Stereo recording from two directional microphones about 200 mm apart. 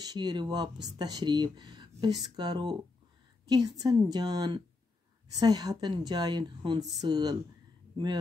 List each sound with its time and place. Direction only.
0.0 s a woman's voice: 20° right (ahead or behind)